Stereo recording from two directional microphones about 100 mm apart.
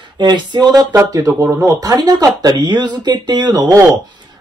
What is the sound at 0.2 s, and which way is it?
Speech, 45° right (ahead or behind).